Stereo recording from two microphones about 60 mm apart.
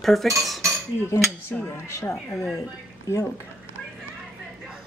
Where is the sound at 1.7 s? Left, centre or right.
Left.